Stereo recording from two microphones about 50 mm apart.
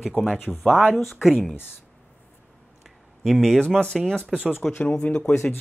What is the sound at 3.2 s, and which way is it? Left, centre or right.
Speech, centre.